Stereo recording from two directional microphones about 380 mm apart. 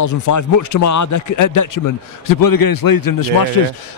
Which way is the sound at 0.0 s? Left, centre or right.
Left.